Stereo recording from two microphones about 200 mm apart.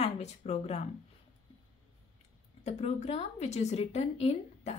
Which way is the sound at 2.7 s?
35° left (ahead or behind).